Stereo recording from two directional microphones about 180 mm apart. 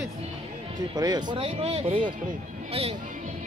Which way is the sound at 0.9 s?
20° right (ahead or behind).